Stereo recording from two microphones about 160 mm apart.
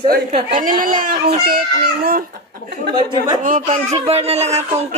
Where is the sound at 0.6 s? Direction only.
60° right (ahead or behind).